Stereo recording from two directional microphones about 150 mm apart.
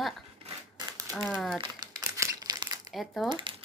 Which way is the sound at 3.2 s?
30° right (ahead or behind).